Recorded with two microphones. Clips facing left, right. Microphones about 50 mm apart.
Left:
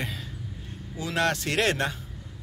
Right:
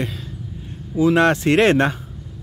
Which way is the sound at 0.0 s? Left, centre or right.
Centre.